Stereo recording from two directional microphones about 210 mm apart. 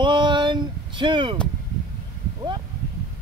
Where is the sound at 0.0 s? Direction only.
20° right (ahead or behind).